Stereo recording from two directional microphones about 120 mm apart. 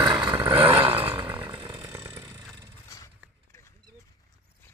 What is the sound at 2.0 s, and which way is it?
Vehicle, 25° right (ahead or behind).